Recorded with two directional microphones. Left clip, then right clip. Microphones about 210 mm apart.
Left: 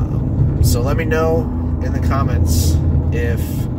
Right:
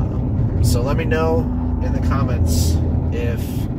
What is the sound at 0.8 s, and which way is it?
Speech, 15° left (ahead or behind).